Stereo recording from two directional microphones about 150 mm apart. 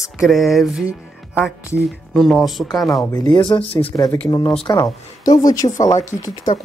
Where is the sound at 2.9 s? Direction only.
20° left (ahead or behind).